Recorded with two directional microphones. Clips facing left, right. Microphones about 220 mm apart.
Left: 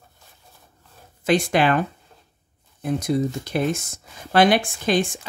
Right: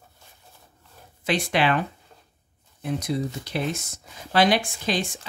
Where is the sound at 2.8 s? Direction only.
45° left (ahead or behind).